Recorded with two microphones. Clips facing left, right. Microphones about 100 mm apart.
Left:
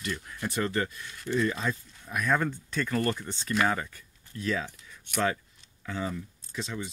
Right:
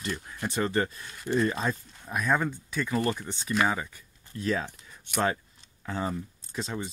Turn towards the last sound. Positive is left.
turn(degrees=-40)  # may be behind; listen again after turning